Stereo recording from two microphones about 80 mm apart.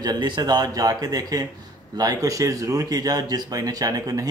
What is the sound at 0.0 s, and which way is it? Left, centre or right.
Speech, right.